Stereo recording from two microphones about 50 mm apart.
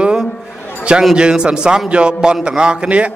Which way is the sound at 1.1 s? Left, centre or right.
Centre.